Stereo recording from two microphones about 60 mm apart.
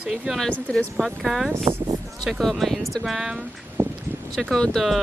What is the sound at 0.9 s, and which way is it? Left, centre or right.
Speech, centre.